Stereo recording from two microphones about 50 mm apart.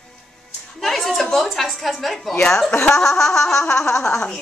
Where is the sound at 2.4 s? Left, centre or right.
Centre.